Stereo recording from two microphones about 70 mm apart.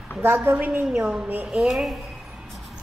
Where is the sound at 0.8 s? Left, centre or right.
Centre.